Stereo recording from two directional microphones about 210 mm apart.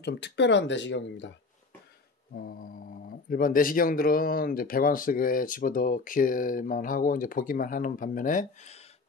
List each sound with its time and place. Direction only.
0.0 s speech: 55° left (ahead or behind)
2.3 s speech: 45° left (ahead or behind)